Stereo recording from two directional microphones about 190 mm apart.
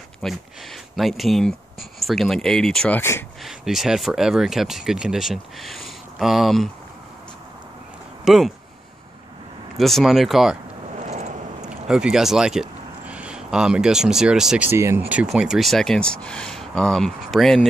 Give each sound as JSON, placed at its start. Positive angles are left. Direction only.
{"t": 0.2, "sound": "speech", "side_deg": 0}
{"t": 3.4, "sound": "speech", "side_deg": 0}
{"t": 8.3, "sound": "speech", "side_deg": 0}
{"t": 9.8, "sound": "speech", "side_deg": 0}
{"t": 11.0, "sound": "vehicle", "side_deg": -35}
{"t": 11.9, "sound": "speech", "side_deg": -5}